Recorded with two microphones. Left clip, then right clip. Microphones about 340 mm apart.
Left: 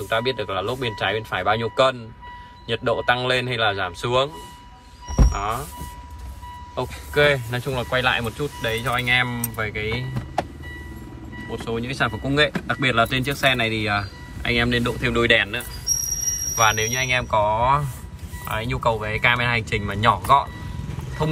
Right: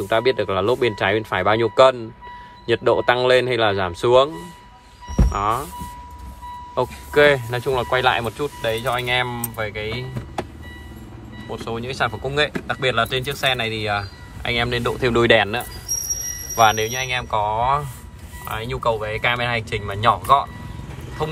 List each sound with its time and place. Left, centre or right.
0.1 s speech: centre
5.3 s speech: centre
6.7 s speech: centre
11.5 s speech: centre